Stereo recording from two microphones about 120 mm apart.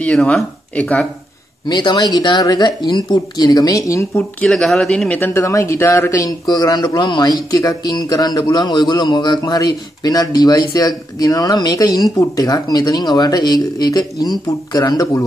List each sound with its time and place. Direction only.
0.0 s speech: 10° left (ahead or behind)
1.7 s a man's voice: 40° left (ahead or behind)
4.4 s a man's voice: 5° left (ahead or behind); by 15.2 s 30° left (ahead or behind)